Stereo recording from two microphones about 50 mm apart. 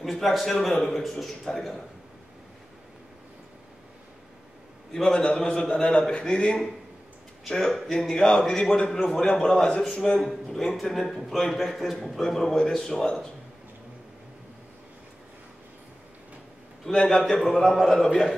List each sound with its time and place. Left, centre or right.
0.0 s a man's voice: centre
4.9 s a man's voice: centre
10.2 s a man's voice: centre
16.9 s a man's voice: centre
17.2 s a man's voice: centre